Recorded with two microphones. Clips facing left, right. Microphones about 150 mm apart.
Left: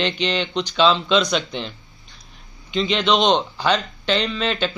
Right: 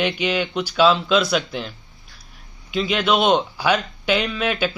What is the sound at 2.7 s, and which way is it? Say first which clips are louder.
A man's voice: even; 5° right (ahead or behind).